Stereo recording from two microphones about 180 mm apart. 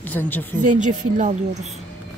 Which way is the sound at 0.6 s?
45° right (ahead or behind).